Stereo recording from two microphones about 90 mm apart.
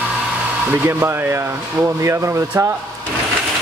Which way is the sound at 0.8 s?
30° right (ahead or behind).